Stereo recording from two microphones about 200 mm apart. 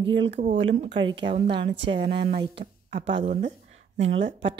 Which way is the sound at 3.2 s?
40° right (ahead or behind).